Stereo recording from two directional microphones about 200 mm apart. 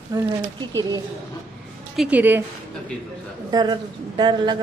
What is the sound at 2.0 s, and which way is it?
Speech, 5° right (ahead or behind).